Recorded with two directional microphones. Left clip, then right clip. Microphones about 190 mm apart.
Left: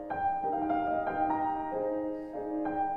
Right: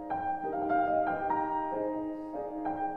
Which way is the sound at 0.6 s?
Centre (ahead or behind).